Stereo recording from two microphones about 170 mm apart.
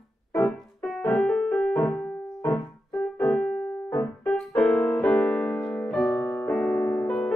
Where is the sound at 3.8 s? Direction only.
10° left (ahead or behind).